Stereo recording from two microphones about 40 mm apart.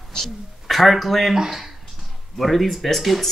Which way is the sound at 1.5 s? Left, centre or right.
Centre.